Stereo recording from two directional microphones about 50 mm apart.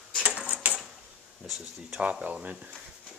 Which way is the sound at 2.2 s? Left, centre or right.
Right.